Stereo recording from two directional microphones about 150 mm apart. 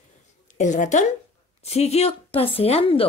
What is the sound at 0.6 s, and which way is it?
A woman's voice, 55° left (ahead or behind).